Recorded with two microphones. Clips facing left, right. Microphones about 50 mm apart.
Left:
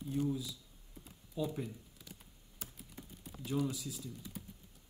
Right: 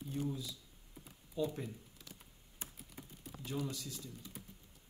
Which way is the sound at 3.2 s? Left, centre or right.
Centre.